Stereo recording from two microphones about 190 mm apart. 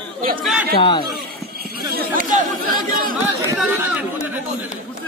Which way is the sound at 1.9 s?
45° right (ahead or behind).